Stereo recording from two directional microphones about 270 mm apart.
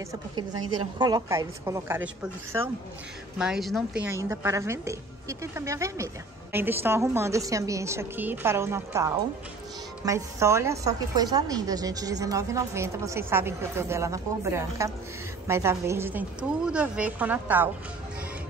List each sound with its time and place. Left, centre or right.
0.1 s a woman's voice: centre
3.3 s a woman's voice: centre